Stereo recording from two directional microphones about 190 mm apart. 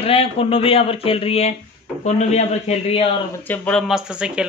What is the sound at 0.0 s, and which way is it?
Speech, 30° left (ahead or behind).